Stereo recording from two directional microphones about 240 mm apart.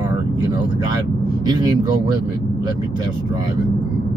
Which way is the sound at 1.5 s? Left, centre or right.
Centre.